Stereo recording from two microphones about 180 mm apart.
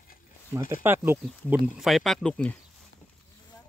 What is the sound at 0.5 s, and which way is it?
Speech, 15° right (ahead or behind).